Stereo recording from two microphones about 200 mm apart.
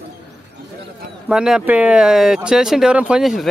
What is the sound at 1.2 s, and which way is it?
Speech, centre (ahead or behind).